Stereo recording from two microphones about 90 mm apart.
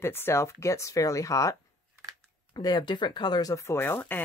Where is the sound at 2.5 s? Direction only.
50° left (ahead or behind).